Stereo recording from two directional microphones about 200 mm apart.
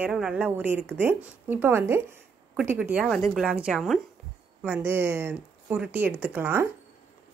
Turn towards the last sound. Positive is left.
turn(degrees=-10)  # may be behind; listen again after turning